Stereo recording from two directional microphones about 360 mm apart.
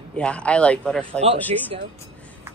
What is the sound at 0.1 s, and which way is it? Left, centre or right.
Speech, centre.